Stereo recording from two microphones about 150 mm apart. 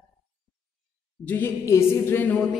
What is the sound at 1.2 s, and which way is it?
A woman's voice, 15° left (ahead or behind).